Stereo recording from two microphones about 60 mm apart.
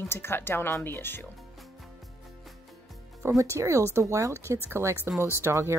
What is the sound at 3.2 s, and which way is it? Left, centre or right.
Speech, right.